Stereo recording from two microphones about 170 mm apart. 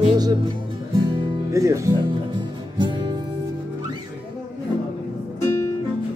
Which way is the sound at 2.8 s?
25° right (ahead or behind).